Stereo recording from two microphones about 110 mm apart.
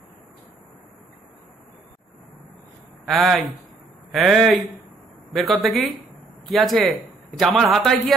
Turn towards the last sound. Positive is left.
turn(degrees=5)  # may be behind; listen again after turning